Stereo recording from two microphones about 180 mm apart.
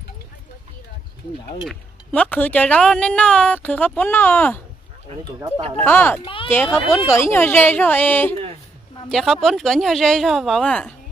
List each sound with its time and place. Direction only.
1.7 s speech: 10° left (ahead or behind)
5.9 s speech: 10° left (ahead or behind)
6.2 s a sound: 30° left (ahead or behind)
6.5 s speech: 15° left (ahead or behind)